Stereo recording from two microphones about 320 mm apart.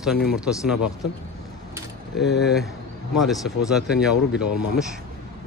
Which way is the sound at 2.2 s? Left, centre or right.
Left.